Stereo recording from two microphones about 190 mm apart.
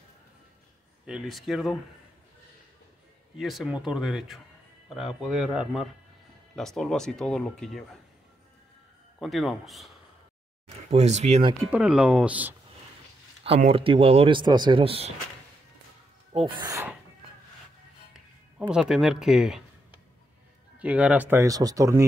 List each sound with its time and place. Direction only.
1.0 s speech: centre (ahead or behind)
3.3 s speech: centre (ahead or behind)
9.2 s speech: centre (ahead or behind)
10.9 s speech: 35° right (ahead or behind)
11.7 s speech: 5° right (ahead or behind)
13.4 s speech: 30° right (ahead or behind)
16.3 s speech: 25° right (ahead or behind)
18.1 s speech: 5° right (ahead or behind)
20.8 s speech: 5° right (ahead or behind)